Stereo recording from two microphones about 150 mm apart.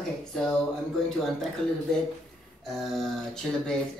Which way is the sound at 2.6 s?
Centre (ahead or behind).